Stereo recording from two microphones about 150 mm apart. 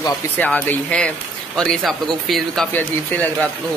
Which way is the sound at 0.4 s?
10° left (ahead or behind).